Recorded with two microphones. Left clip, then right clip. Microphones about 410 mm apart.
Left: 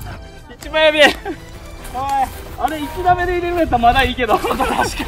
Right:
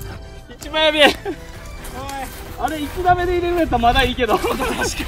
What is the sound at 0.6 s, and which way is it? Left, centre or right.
Speech, centre.